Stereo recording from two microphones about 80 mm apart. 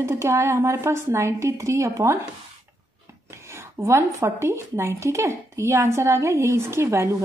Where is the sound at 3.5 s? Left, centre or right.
Right.